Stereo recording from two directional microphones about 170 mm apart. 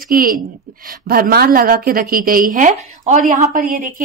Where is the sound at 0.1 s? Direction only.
60° right (ahead or behind).